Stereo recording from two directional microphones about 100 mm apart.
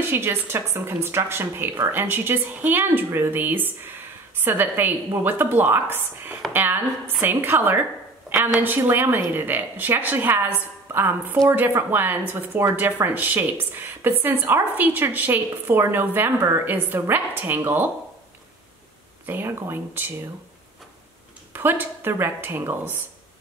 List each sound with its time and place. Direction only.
0.0 s speech: 25° right (ahead or behind)
19.2 s speech: 20° right (ahead or behind)
21.5 s speech: 20° right (ahead or behind)